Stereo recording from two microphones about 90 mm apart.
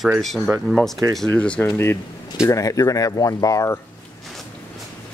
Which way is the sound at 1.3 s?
15° left (ahead or behind).